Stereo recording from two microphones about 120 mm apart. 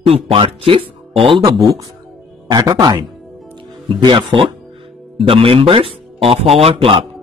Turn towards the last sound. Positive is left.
turn(degrees=-50)  # may be behind; listen again after turning